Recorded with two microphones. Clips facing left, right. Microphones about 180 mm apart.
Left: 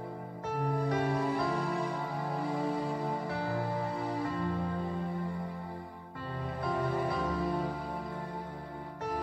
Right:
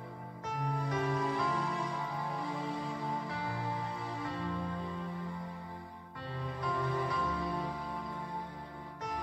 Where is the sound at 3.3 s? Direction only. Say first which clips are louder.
Left 5 dB; 65° left (ahead or behind).